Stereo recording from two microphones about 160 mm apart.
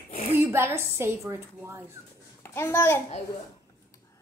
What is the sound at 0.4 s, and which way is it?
A woman's voice, 15° right (ahead or behind).